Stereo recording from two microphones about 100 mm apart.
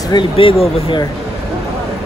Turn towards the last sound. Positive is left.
turn(degrees=70)  # may be behind; listen again after turning